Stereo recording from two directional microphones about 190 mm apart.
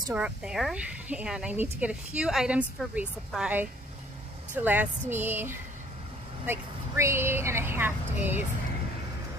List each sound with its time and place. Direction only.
0.1 s speech: 5° right (ahead or behind)